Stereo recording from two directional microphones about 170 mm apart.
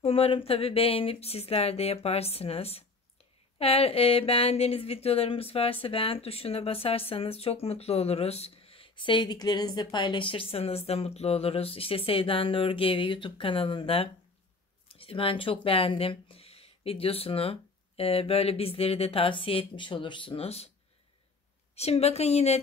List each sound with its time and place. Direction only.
0.0 s speech: 35° left (ahead or behind)
21.7 s speech: 40° left (ahead or behind)